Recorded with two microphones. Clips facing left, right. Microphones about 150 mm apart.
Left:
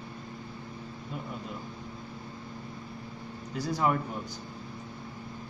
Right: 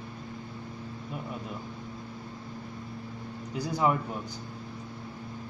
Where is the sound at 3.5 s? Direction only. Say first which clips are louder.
Right 1 dB; 15° right (ahead or behind).